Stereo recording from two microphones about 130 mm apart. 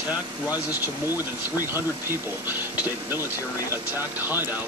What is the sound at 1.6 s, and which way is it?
Speech, 15° right (ahead or behind).